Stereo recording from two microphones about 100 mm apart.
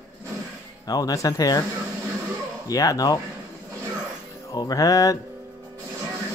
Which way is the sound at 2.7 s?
35° left (ahead or behind).